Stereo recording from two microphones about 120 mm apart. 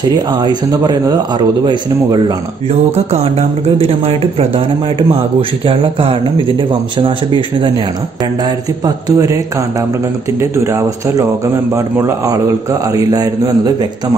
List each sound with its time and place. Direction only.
0.4 s a man's voice: 35° right (ahead or behind)
3.1 s a man's voice: 60° right (ahead or behind); by 7.7 s 45° right (ahead or behind)
8.8 s speech: 30° right (ahead or behind)
10.5 s a man's voice: 25° right (ahead or behind)